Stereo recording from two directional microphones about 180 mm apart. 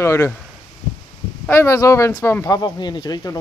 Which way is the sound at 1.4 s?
15° left (ahead or behind).